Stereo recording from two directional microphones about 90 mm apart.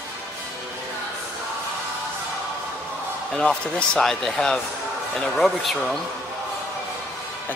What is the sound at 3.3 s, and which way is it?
Speech, 10° left (ahead or behind).